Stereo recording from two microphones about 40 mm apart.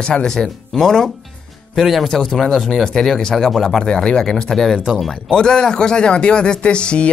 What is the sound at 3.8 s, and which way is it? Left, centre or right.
Speech, centre.